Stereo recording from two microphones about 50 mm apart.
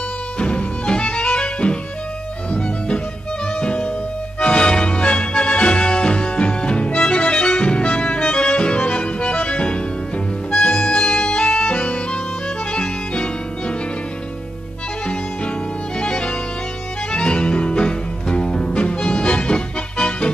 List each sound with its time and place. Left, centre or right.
0.4 s music: left
3.5 s music: left
16.0 s music: left